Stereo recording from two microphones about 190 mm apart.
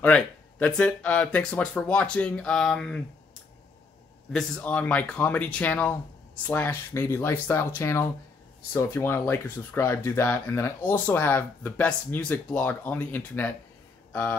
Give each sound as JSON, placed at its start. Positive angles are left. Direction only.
{"t": 0.0, "sound": "speech", "side_deg": 5}
{"t": 4.3, "sound": "speech", "side_deg": 5}